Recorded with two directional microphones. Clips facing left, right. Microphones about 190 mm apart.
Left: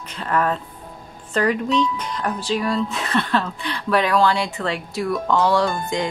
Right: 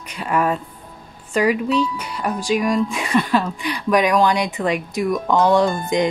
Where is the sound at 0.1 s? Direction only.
10° right (ahead or behind).